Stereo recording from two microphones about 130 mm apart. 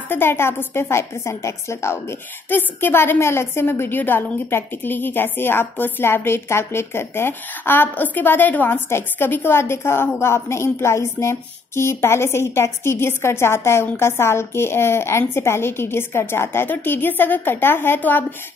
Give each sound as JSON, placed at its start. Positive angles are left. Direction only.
{"t": 0.1, "sound": "a woman's voice", "side_deg": 15}